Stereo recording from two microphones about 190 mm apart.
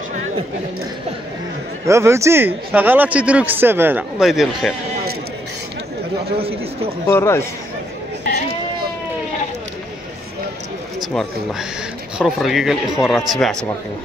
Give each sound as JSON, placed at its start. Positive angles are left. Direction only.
{"t": 1.9, "sound": "speech", "side_deg": -15}
{"t": 6.3, "sound": "speech", "side_deg": -30}
{"t": 7.1, "sound": "speech", "side_deg": 15}
{"t": 12.2, "sound": "a man's voice", "side_deg": 0}